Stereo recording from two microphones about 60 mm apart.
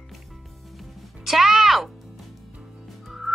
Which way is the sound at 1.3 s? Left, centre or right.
Centre.